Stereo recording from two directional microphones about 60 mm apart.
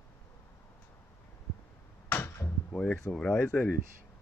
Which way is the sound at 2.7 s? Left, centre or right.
Left.